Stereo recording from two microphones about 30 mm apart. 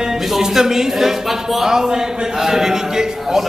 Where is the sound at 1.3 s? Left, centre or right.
Centre.